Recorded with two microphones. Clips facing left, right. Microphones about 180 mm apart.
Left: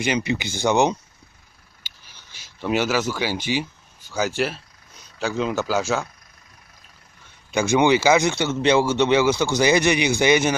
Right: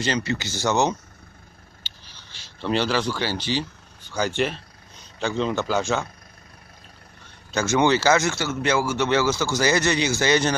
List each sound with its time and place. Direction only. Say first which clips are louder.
0.0 s speech: left 2 dB; 15° left (ahead or behind)
1.8 s a sound: right 2 dB; 10° left (ahead or behind)
4.4 s speech: even; 5° left (ahead or behind)
7.5 s speech: left 2 dB; 15° left (ahead or behind)